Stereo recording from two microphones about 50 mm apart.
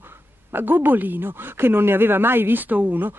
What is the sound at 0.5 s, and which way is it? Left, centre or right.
Speech, right.